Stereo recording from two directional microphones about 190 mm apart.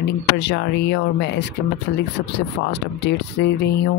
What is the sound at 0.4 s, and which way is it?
Speech, 65° left (ahead or behind).